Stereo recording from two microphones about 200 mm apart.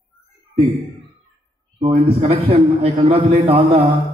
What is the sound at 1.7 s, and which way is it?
A man's voice, 30° right (ahead or behind).